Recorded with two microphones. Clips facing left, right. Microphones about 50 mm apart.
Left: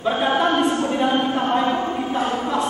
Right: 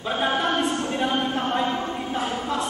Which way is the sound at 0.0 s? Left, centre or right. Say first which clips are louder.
Left 4 dB; centre.